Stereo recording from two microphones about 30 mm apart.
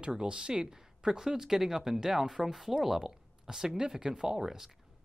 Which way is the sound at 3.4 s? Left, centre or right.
Right.